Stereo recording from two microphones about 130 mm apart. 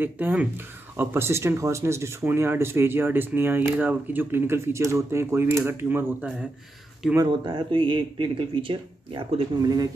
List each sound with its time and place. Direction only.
0.0 s speech: 10° right (ahead or behind)
7.2 s speech: 40° right (ahead or behind)